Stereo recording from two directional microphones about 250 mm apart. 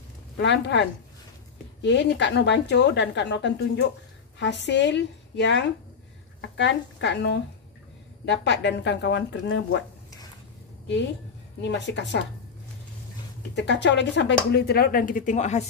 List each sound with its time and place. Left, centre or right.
0.4 s speech: left
11.6 s speech: left
13.6 s speech: left